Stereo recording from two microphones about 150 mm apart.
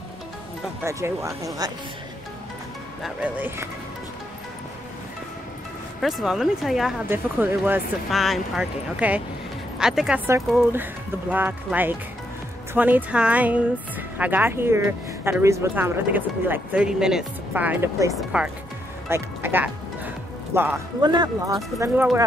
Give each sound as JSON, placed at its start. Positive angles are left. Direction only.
{"t": 0.8, "sound": "speech", "side_deg": -20}
{"t": 3.0, "sound": "speech", "side_deg": -10}
{"t": 5.9, "sound": "speech", "side_deg": 0}
{"t": 7.1, "sound": "speech", "side_deg": -15}
{"t": 8.1, "sound": "speech", "side_deg": 0}
{"t": 18.1, "sound": "speech", "side_deg": -5}
{"t": 21.0, "sound": "speech", "side_deg": -30}